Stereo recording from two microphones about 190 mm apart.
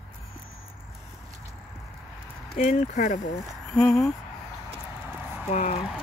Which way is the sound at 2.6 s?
40° left (ahead or behind).